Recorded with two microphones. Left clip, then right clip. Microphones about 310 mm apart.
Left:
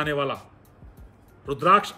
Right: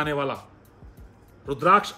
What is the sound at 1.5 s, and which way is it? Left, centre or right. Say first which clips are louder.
Speech: even; centre.